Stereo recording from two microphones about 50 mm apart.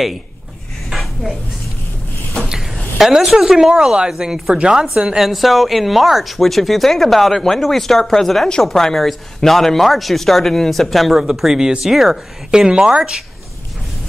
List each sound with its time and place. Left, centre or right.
0.8 s dishes: centre
3.0 s speech: centre
11.1 s speech: centre
12.4 s speech: centre